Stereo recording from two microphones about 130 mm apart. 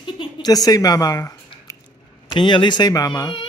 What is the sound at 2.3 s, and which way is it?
Speech, 35° left (ahead or behind).